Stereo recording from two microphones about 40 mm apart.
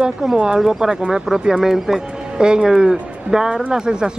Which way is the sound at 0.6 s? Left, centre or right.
Centre.